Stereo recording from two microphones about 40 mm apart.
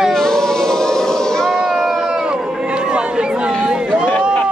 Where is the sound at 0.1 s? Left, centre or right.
Centre.